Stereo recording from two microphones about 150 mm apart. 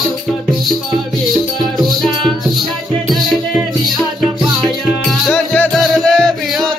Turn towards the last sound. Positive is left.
turn(degrees=0)  # may be behind; listen again after turning